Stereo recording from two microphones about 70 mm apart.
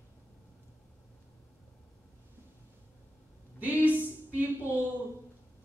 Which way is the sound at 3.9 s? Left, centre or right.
Right.